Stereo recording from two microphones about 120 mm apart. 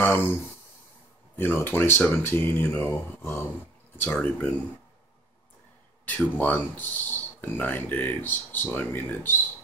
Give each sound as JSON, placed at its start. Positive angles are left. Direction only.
{"t": 0.0, "sound": "a sound", "side_deg": 20}
{"t": 1.4, "sound": "speech", "side_deg": 15}
{"t": 6.0, "sound": "speech", "side_deg": 15}